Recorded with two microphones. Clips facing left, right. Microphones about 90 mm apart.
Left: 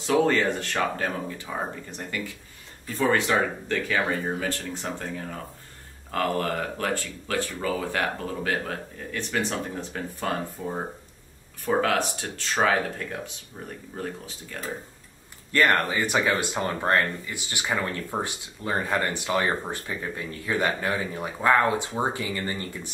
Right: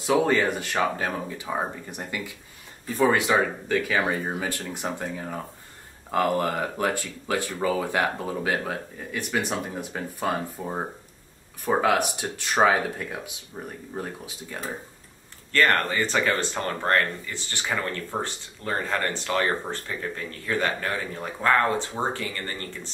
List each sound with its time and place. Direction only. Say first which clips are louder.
0.0 s speech: even; 10° right (ahead or behind)
13.5 s speech: right 2 dB; 20° right (ahead or behind)
15.5 s speech: even; 15° left (ahead or behind)